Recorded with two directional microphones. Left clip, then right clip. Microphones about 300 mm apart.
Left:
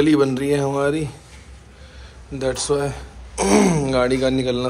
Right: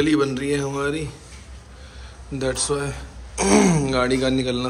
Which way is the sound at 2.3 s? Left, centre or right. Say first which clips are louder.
Left 3 dB; centre.